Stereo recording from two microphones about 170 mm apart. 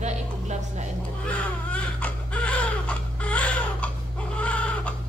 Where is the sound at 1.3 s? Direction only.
10° left (ahead or behind).